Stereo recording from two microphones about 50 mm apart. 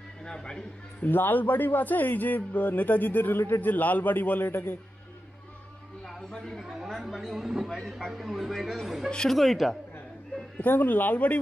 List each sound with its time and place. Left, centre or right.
0.2 s speech: centre
1.0 s a man's voice: left
6.0 s a sound: centre
6.6 s speech: centre
10.6 s a man's voice: left